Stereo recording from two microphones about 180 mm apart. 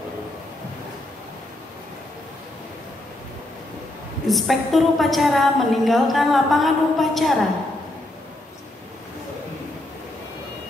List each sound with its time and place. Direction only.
4.3 s a woman's voice: centre (ahead or behind)